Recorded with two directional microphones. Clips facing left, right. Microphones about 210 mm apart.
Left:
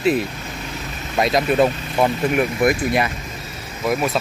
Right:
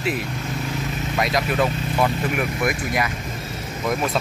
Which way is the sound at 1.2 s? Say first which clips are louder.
Left 5 dB; 25° left (ahead or behind).